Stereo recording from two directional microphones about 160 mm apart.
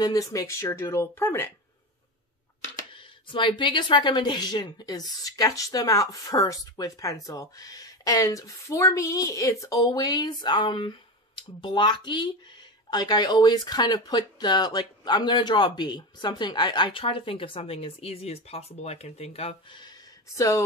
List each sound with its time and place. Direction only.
0.0 s speech: 20° left (ahead or behind)
2.9 s speech: 30° left (ahead or behind)
19.8 s a sound: 20° left (ahead or behind)